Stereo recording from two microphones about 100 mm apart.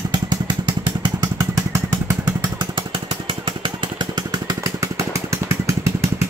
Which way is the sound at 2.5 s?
55° right (ahead or behind).